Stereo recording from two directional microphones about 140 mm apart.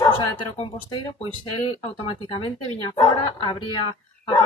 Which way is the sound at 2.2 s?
35° left (ahead or behind).